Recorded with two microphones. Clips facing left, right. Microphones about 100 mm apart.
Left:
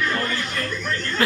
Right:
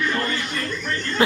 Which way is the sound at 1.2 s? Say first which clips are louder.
Right 3 dB; 20° right (ahead or behind).